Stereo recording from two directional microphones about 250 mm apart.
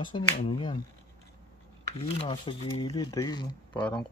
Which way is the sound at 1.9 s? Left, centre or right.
Left.